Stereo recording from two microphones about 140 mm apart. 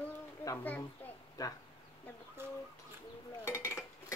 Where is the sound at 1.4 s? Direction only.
25° left (ahead or behind).